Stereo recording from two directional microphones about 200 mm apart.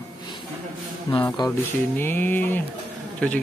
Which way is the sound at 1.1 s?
20° left (ahead or behind).